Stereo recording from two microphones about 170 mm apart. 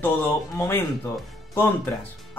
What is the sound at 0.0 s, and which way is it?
Speech, 15° left (ahead or behind).